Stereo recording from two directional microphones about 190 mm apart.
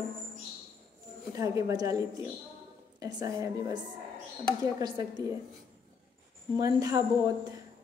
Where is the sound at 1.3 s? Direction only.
15° right (ahead or behind).